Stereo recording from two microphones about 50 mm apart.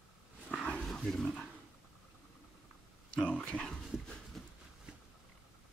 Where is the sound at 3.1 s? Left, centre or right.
Centre.